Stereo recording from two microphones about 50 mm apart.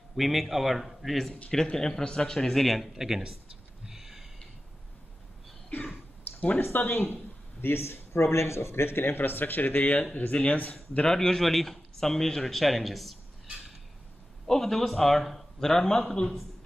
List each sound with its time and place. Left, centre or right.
0.1 s a man's voice: centre
3.0 s speech: centre
3.8 s a sound: centre
5.7 s cough: left
6.6 s speech: left
7.6 s speech: left
11.1 s a man's voice: centre